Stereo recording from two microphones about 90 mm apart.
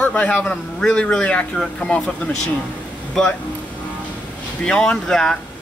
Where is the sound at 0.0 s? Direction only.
15° left (ahead or behind).